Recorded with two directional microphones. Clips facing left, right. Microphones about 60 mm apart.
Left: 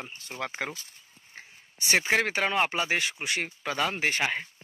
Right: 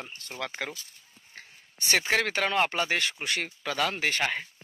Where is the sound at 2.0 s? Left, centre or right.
Centre.